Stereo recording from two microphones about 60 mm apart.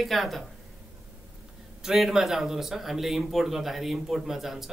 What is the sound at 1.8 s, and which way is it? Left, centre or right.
Speech, centre.